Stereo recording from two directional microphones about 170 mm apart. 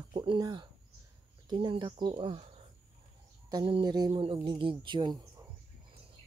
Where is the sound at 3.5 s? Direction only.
30° right (ahead or behind).